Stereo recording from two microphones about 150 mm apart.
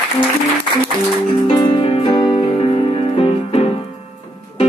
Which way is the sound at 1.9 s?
35° left (ahead or behind).